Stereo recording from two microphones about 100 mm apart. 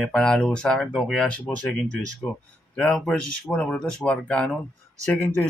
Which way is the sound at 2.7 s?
10° left (ahead or behind).